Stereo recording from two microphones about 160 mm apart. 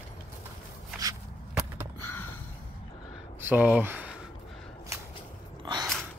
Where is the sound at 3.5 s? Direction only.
10° right (ahead or behind).